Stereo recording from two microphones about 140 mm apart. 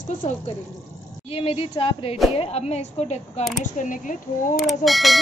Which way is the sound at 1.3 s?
40° left (ahead or behind).